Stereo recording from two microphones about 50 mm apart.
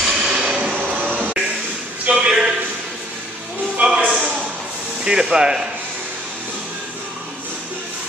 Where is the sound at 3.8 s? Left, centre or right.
Right.